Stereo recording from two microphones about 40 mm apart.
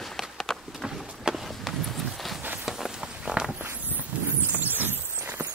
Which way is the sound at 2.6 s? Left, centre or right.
Centre.